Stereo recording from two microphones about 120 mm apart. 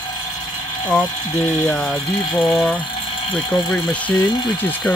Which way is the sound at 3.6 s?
10° left (ahead or behind).